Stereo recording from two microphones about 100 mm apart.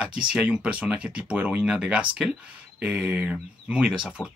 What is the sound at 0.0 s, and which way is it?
Speech, 10° right (ahead or behind).